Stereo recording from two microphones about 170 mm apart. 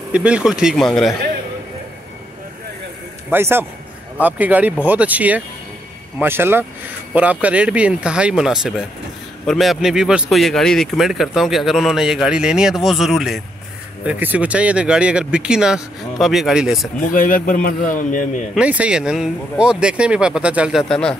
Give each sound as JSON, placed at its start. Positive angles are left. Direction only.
{"t": 0.1, "sound": "speech", "side_deg": -5}
{"t": 3.3, "sound": "speech", "side_deg": -15}
{"t": 17.1, "sound": "a man's voice", "side_deg": 55}
{"t": 18.5, "sound": "speech", "side_deg": -5}